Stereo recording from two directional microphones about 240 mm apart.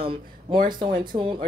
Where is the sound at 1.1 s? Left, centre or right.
Right.